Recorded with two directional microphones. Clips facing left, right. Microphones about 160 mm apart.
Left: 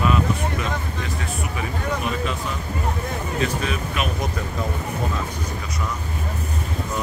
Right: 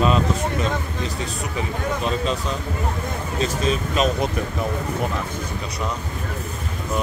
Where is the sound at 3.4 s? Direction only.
30° right (ahead or behind).